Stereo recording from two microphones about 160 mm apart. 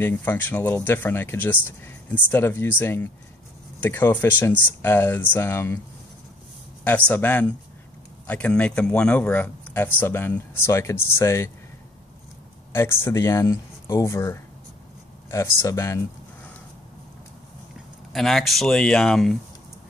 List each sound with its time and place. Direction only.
0.0 s speech: 10° left (ahead or behind)
6.8 s speech: 10° left (ahead or behind)
12.7 s speech: 15° left (ahead or behind)
18.1 s speech: centre (ahead or behind)